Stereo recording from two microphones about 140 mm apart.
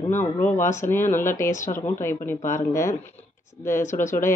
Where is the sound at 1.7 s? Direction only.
15° left (ahead or behind).